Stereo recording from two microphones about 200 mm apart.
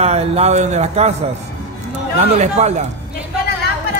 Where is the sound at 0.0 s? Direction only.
30° right (ahead or behind).